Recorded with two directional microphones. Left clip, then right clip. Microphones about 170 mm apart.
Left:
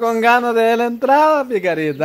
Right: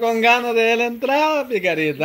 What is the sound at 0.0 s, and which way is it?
Speech, 25° left (ahead or behind).